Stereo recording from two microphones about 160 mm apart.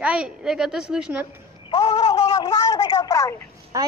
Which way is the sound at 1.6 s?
25° left (ahead or behind).